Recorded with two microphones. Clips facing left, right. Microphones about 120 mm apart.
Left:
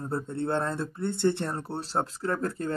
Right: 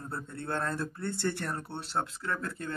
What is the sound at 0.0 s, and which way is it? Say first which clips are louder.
Speech: left 8 dB; 30° left (ahead or behind).